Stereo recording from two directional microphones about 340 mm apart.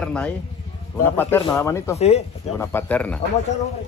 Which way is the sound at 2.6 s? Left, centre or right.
Centre.